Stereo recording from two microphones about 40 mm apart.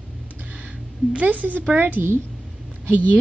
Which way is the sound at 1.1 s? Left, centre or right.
Right.